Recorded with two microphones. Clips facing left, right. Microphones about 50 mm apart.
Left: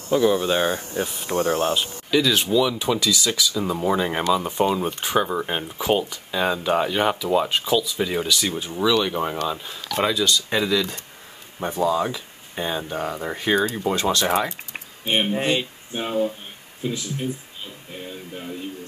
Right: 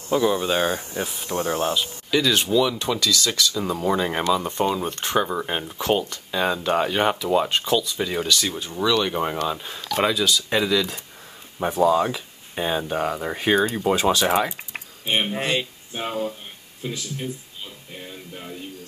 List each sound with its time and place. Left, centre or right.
0.1 s speech: centre
15.4 s speech: left
16.8 s speech: centre